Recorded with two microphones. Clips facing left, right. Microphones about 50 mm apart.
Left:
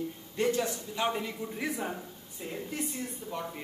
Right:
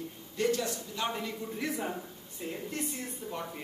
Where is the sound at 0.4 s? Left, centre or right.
Left.